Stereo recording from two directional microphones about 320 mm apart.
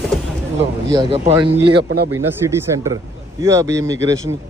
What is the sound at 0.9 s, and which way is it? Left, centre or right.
Speech, centre.